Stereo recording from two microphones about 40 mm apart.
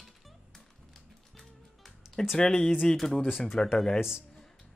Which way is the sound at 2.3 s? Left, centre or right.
Centre.